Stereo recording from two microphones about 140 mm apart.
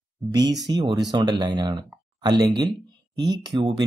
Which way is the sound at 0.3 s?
30° right (ahead or behind).